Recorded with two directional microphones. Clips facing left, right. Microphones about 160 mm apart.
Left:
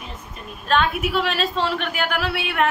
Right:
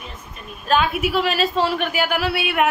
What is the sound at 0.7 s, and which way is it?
A woman's voice, 5° right (ahead or behind).